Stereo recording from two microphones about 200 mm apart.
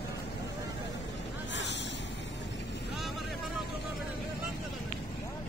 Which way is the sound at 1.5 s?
60° left (ahead or behind).